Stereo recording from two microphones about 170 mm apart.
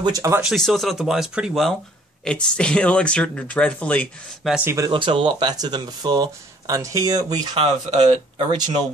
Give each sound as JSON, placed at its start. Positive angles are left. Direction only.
{"t": 0.0, "sound": "speech", "side_deg": -20}
{"t": 0.4, "sound": "speech", "side_deg": 0}
{"t": 4.6, "sound": "speech", "side_deg": -20}
{"t": 4.9, "sound": "speech", "side_deg": -30}